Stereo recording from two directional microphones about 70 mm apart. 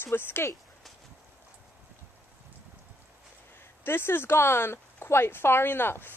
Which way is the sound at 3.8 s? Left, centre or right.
Left.